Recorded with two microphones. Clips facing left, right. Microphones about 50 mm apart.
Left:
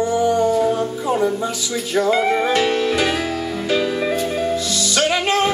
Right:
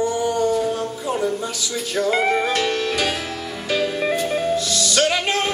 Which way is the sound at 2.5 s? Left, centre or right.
Centre.